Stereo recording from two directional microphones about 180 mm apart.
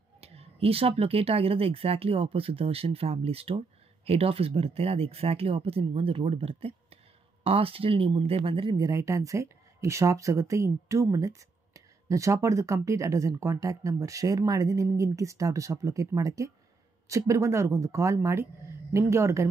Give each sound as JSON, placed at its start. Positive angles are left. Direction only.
{"t": 0.2, "sound": "speech", "side_deg": -35}